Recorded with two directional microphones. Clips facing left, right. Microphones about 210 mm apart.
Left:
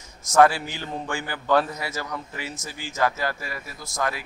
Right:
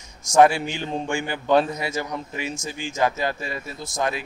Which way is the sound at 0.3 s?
20° right (ahead or behind).